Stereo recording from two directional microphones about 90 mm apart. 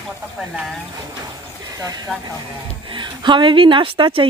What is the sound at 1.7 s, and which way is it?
Speech, 45° right (ahead or behind).